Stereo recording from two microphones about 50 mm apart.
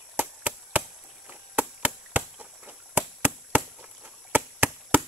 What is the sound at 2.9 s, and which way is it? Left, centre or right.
Chop, right.